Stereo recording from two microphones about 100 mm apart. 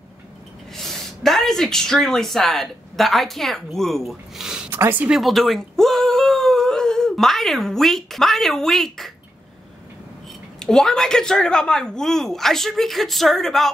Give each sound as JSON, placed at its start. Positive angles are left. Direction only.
{"t": 0.7, "sound": "speech", "side_deg": 5}
{"t": 4.6, "sound": "speech", "side_deg": -20}
{"t": 5.1, "sound": "speech", "side_deg": 0}
{"t": 10.6, "sound": "speech", "side_deg": 5}